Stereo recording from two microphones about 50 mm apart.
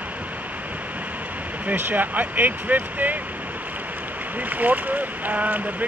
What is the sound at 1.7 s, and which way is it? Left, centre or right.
Speech, right.